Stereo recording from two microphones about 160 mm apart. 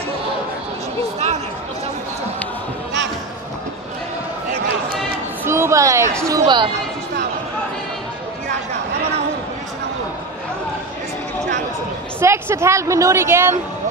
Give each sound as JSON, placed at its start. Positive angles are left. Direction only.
{"t": 5.4, "sound": "a sound", "side_deg": -15}
{"t": 6.2, "sound": "speech", "side_deg": -25}
{"t": 12.2, "sound": "a woman's voice", "side_deg": -15}